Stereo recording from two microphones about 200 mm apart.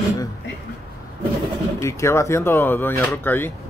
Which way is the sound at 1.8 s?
15° left (ahead or behind).